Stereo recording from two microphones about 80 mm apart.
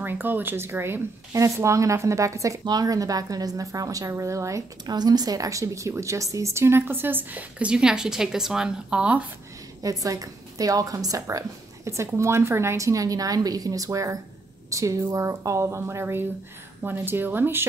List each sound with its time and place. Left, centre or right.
0.0 s a woman's voice: right
2.6 s a woman's voice: right
4.8 s a woman's voice: right; by 9.3 s centre
9.8 s a woman's voice: right